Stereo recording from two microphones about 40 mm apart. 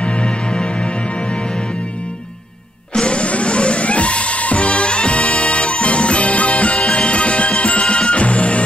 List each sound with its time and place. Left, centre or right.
0.0 s music: left
2.9 s music: left